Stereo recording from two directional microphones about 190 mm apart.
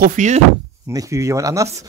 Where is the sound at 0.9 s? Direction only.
15° right (ahead or behind).